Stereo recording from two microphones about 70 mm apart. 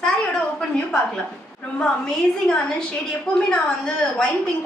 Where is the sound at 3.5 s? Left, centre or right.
Centre.